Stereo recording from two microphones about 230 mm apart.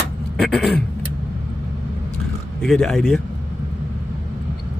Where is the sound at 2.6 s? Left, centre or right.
Centre.